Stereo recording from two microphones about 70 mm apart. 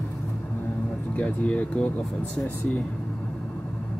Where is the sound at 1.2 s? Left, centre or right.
Centre.